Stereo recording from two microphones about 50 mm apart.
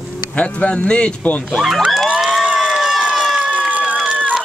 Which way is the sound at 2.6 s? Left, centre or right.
Centre.